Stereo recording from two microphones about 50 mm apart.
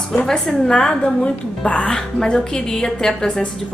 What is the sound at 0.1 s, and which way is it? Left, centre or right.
A woman's voice, centre.